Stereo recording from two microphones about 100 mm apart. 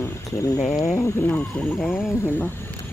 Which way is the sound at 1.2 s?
10° left (ahead or behind).